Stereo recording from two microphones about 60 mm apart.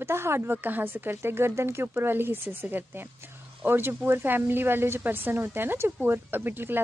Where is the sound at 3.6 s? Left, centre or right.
Right.